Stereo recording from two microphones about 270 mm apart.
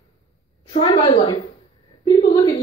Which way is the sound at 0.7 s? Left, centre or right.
Left.